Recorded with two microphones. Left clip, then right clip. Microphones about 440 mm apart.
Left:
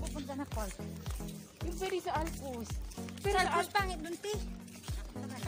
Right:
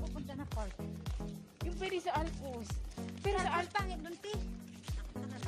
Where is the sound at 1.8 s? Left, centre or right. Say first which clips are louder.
Left 1 dB; right.